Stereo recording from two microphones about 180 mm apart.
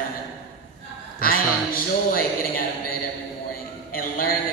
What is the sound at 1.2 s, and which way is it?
A man's voice, 55° left (ahead or behind).